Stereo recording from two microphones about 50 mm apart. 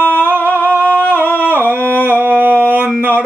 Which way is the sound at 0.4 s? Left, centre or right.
Left.